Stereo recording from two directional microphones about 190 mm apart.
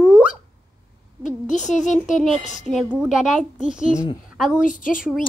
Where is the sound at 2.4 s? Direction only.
40° left (ahead or behind).